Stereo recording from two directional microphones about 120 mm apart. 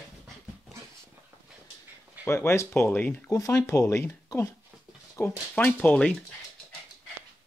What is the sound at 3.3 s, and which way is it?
Speech, 30° left (ahead or behind).